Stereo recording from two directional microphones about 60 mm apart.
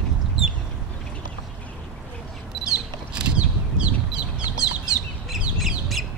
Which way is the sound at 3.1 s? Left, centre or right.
Centre.